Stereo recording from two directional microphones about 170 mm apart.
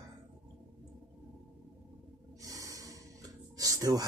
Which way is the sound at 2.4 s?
20° right (ahead or behind).